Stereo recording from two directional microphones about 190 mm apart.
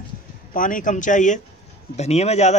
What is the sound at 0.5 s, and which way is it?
A man's voice, 45° left (ahead or behind).